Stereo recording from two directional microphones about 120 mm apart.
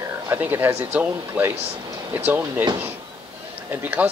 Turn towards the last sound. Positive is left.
turn(degrees=-15)  # may be behind; listen again after turning